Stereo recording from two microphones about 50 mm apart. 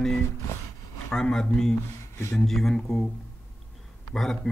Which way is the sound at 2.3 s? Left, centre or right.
Centre.